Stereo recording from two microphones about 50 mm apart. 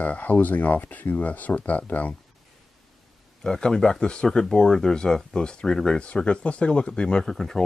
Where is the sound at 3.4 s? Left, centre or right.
Centre.